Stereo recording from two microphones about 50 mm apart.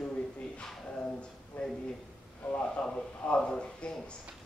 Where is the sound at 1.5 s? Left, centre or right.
Left.